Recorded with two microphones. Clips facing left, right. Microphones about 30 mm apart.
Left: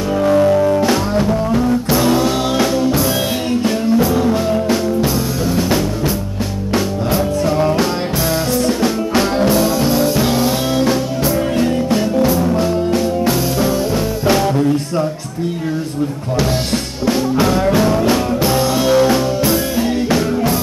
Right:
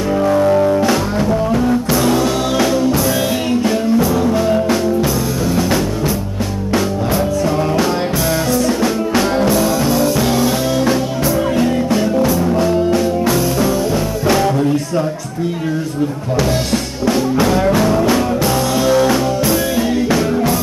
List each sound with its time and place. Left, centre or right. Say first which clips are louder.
0.8 s music: even; centre
7.4 s music: left 1 dB; centre
8.8 s music: even; centre
11.6 s music: right 1 dB; centre
17.1 s music: even; centre
17.8 s music: right 1 dB; centre
18.9 s music: even; centre